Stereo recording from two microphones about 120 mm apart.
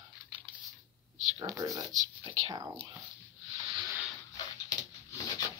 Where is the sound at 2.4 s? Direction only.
45° right (ahead or behind).